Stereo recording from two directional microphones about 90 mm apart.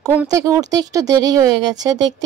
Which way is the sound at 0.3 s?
40° right (ahead or behind).